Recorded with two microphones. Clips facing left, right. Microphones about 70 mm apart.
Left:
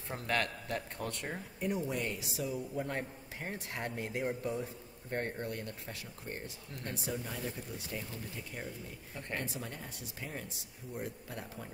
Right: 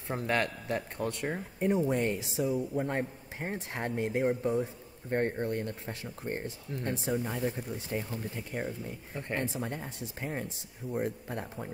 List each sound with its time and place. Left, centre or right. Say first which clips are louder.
0.1 s speech: right 4 dB; right